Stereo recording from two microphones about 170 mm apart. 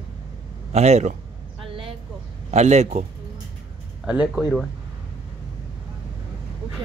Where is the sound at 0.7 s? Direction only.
40° right (ahead or behind).